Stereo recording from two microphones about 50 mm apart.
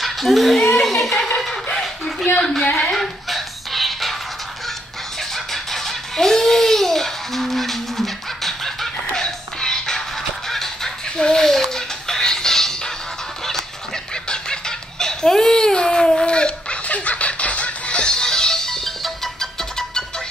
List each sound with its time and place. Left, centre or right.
0.0 s a child's voice: centre
0.7 s music: centre
1.4 s a sound: centre
2.6 s speech: centre
2.9 s music: centre
5.5 s music: centre
10.5 s a sound: centre
14.3 s giggle: centre
16.9 s music: left; by 18.8 s centre